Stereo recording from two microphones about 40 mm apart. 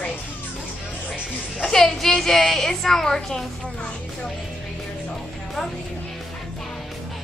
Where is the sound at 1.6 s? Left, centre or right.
Centre.